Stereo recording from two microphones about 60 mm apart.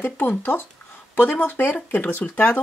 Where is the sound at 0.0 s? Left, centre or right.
Left.